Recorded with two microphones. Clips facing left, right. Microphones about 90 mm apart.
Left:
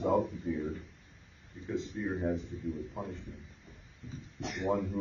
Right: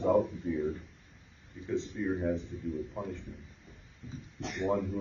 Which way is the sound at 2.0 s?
45° left (ahead or behind).